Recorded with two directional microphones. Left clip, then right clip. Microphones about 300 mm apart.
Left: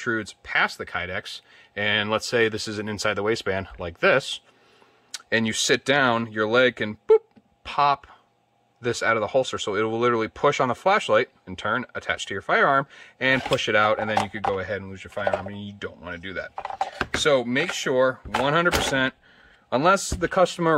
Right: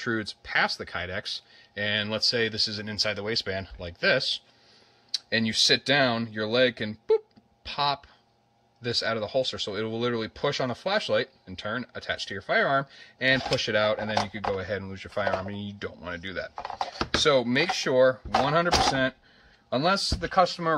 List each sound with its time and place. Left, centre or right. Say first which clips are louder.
0.0 s speech: left 3 dB; centre
5.3 s speech: left 1 dB; centre